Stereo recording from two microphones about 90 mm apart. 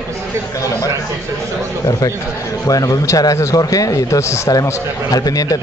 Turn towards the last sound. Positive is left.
turn(degrees=40)  # may be behind; listen again after turning